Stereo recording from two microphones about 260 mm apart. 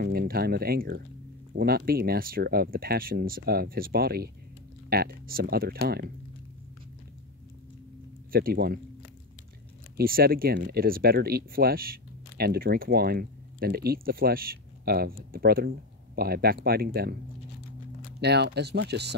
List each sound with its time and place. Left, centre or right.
0.0 s speech: right
8.3 s speech: right
9.9 s speech: right
18.2 s speech: right